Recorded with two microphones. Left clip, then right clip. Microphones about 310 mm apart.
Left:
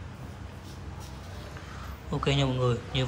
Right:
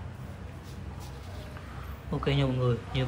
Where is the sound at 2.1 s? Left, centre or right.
Centre.